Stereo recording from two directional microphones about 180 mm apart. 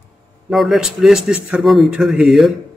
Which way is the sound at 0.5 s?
Centre (ahead or behind).